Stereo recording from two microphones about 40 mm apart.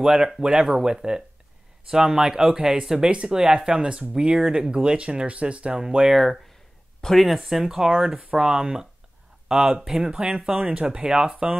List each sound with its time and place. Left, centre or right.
0.0 s speech: centre; by 5.8 s right
5.8 s speech: centre
6.1 s speech: centre; by 11.5 s right